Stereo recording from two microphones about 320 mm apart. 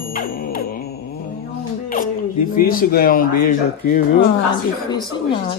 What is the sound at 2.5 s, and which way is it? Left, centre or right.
Speech, left.